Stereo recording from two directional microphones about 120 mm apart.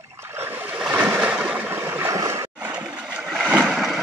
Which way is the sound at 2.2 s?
25° right (ahead or behind).